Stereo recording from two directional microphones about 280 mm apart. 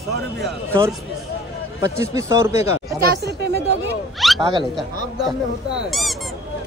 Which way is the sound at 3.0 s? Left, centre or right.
Right.